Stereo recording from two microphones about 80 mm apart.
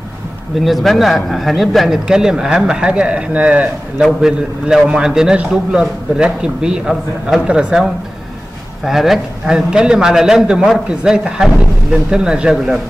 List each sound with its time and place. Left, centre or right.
0.6 s a man's voice: centre
4.0 s a man's voice: centre